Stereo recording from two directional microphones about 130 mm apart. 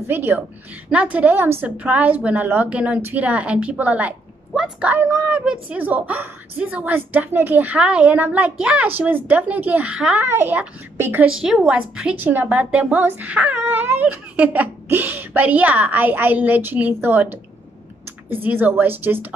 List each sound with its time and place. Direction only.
0.0 s a woman's voice: 15° right (ahead or behind)